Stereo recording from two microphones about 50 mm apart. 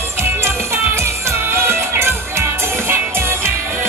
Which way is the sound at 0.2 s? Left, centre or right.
Right.